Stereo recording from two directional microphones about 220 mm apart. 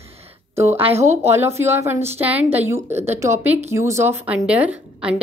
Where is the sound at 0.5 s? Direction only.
10° right (ahead or behind).